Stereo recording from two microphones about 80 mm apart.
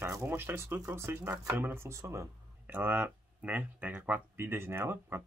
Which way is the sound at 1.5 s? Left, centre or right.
Right.